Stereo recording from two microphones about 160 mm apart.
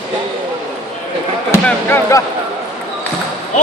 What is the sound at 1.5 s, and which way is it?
Basketball bounce, 15° left (ahead or behind).